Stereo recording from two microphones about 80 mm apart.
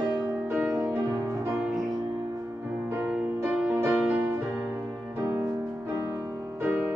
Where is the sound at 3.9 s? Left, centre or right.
Centre.